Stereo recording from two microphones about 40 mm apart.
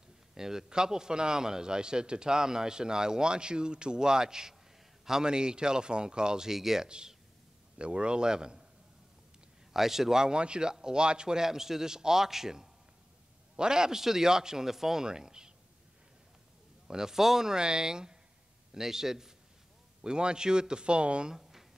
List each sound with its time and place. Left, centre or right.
0.3 s a man's voice: centre
6.9 s a man's voice: right
9.7 s speech: centre
16.8 s a man's voice: centre
21.4 s a sound: centre